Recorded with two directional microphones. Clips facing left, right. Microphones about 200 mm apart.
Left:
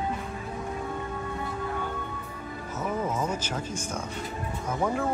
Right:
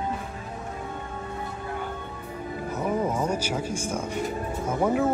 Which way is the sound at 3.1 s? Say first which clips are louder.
Right 3 dB; 10° right (ahead or behind).